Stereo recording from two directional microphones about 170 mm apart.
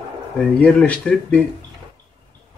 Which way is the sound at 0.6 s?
10° left (ahead or behind).